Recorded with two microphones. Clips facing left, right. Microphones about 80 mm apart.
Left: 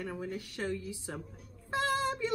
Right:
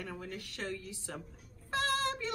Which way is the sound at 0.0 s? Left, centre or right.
Centre.